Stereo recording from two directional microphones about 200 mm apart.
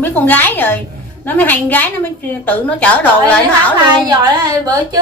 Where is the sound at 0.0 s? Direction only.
10° left (ahead or behind).